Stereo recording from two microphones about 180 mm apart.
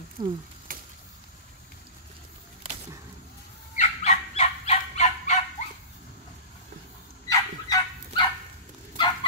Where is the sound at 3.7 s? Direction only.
40° left (ahead or behind).